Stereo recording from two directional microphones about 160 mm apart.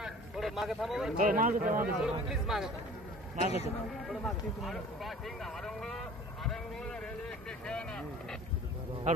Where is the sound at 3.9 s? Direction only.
Centre (ahead or behind).